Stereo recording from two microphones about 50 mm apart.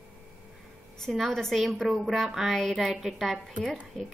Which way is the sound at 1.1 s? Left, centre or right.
Centre.